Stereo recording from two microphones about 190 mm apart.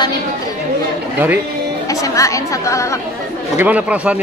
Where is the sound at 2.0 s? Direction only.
15° left (ahead or behind).